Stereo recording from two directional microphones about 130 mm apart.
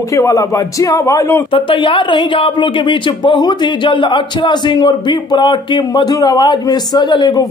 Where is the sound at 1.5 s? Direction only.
40° left (ahead or behind).